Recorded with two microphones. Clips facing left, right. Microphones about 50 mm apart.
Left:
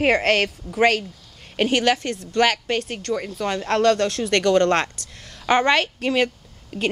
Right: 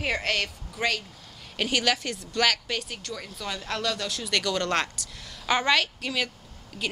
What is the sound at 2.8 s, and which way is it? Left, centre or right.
A woman's voice, left.